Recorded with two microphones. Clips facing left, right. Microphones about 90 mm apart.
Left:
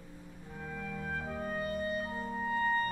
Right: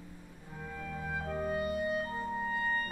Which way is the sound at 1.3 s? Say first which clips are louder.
Right 7 dB; 5° right (ahead or behind).